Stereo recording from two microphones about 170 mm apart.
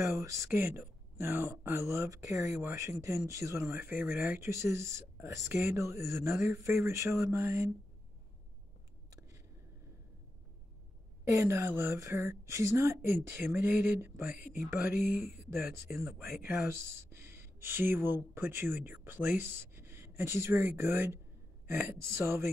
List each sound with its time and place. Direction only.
0.0 s a woman's voice: 15° right (ahead or behind)
11.3 s a woman's voice: 15° right (ahead or behind)